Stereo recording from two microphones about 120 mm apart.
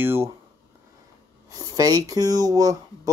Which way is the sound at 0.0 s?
20° right (ahead or behind).